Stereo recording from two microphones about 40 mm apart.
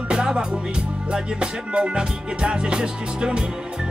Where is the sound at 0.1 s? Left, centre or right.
Centre.